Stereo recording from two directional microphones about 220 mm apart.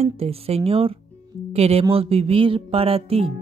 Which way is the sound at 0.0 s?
25° right (ahead or behind).